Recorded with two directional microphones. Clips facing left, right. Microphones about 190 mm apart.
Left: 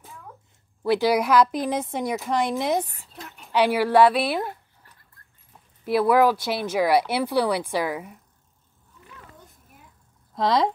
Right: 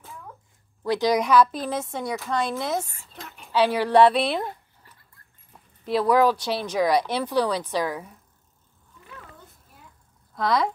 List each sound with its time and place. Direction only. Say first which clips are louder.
0.9 s speech: even; 10° left (ahead or behind)
5.9 s speech: left 1 dB; 10° left (ahead or behind)
10.3 s speech: left 2 dB; 25° left (ahead or behind)